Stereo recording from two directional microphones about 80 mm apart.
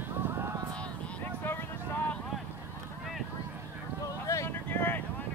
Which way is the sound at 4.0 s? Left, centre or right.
Left.